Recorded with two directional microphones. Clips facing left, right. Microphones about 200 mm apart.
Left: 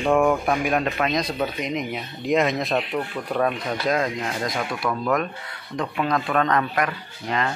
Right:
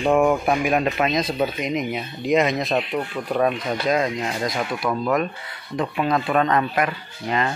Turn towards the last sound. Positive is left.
turn(degrees=-5)  # may be behind; listen again after turning